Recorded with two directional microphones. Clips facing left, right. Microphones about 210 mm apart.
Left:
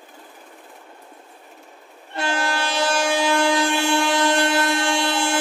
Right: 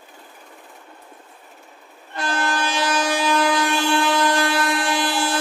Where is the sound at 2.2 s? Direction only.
25° left (ahead or behind).